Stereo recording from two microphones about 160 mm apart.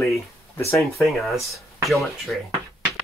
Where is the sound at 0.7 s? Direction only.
Centre (ahead or behind).